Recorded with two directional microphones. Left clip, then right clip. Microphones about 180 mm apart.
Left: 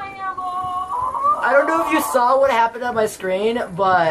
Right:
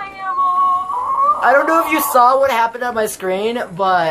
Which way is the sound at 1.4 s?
55° right (ahead or behind).